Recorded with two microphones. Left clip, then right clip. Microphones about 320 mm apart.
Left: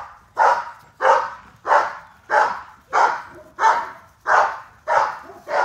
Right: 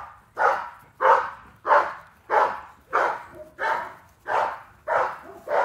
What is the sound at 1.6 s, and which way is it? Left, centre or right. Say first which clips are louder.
Dog: left 2 dB; left.